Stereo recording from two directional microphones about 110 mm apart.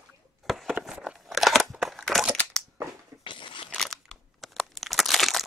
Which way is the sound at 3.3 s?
50° left (ahead or behind).